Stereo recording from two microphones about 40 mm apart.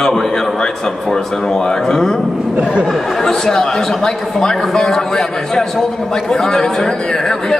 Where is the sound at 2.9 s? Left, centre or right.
Centre.